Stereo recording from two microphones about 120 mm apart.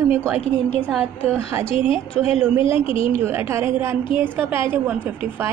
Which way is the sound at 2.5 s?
50° left (ahead or behind).